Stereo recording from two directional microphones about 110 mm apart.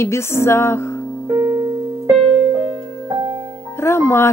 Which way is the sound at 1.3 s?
25° right (ahead or behind).